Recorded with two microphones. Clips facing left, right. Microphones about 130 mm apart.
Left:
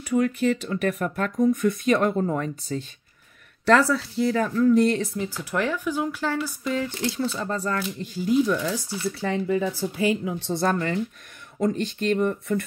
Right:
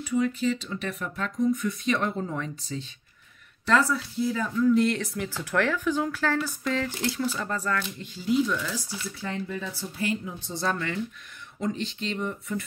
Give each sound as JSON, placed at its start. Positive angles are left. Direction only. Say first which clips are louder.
{"t": 0.0, "sound": "speech", "louder": "left 3 dB", "side_deg": 60}
{"t": 3.6, "sound": "speech", "louder": "left 5 dB", "side_deg": 70}
{"t": 4.6, "sound": "speech", "louder": "left 2 dB", "side_deg": 40}
{"t": 5.1, "sound": "speech", "louder": "even", "side_deg": 20}
{"t": 8.0, "sound": "speech", "louder": "left 4 dB", "side_deg": 45}
{"t": 9.2, "sound": "speech", "louder": "left 8 dB", "side_deg": 90}
{"t": 10.2, "sound": "speech", "louder": "left 8 dB", "side_deg": 70}
{"t": 10.6, "sound": "speech", "louder": "left 4 dB", "side_deg": 40}